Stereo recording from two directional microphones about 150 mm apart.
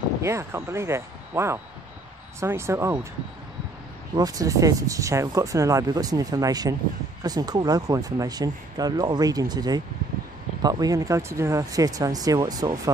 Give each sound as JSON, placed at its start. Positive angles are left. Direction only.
{"t": 0.2, "sound": "speech", "side_deg": -20}
{"t": 4.1, "sound": "speech", "side_deg": -25}